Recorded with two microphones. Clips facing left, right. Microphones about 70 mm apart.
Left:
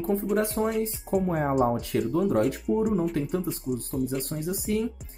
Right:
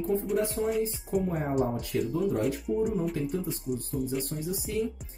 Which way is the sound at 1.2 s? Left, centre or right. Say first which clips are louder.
Left 6 dB; left.